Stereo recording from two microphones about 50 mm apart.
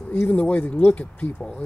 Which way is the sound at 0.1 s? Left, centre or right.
Left.